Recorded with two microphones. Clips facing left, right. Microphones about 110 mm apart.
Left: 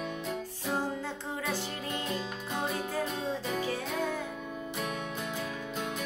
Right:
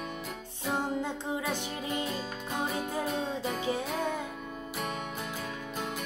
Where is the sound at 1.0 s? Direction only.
15° right (ahead or behind).